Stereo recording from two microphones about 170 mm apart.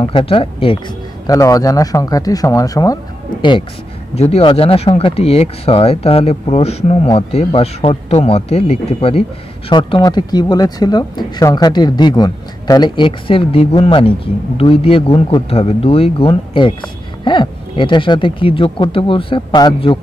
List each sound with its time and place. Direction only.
0.0 s speech: 30° left (ahead or behind)
4.1 s speech: 35° left (ahead or behind)